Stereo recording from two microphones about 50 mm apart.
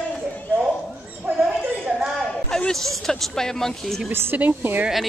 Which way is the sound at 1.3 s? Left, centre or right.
Right.